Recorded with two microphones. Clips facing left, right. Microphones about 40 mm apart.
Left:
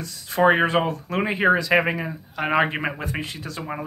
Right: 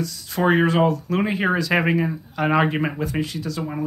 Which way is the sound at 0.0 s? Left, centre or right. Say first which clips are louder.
Left 2 dB; left.